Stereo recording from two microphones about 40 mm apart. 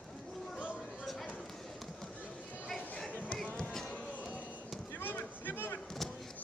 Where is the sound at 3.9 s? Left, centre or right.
Left.